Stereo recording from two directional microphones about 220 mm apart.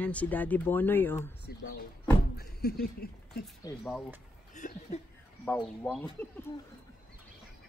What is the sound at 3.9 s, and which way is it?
Speech, 5° right (ahead or behind).